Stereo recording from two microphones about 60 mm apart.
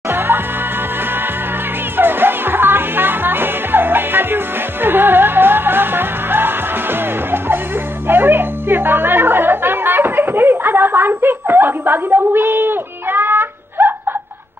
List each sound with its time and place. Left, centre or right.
2.0 s music: right